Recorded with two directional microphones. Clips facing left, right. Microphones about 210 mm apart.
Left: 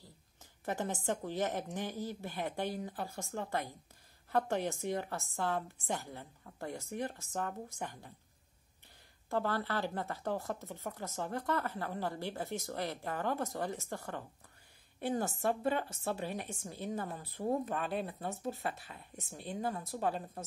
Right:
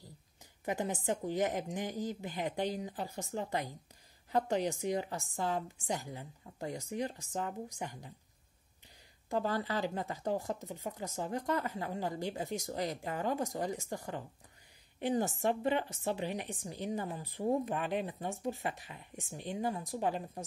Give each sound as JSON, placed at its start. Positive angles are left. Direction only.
{"t": 0.7, "sound": "a woman's voice", "side_deg": -15}
{"t": 9.3, "sound": "a woman's voice", "side_deg": -15}